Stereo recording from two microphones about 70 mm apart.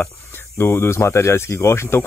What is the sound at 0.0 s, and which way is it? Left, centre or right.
Speech, left.